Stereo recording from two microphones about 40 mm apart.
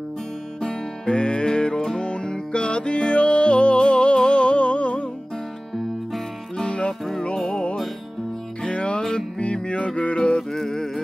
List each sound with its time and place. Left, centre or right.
0.6 s music: centre
6.6 s music: left
6.9 s music: centre
8.6 s music: left
10.5 s music: centre